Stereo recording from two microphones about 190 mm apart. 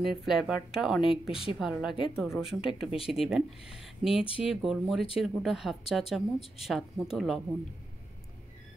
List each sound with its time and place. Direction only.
0.0 s a woman's voice: centre (ahead or behind)
1.3 s a woman's voice: 30° left (ahead or behind)
1.6 s a woman's voice: 5° right (ahead or behind)